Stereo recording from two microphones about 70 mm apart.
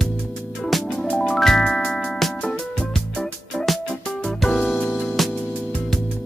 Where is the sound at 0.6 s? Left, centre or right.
Centre.